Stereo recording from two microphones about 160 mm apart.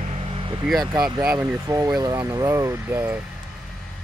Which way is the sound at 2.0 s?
20° right (ahead or behind).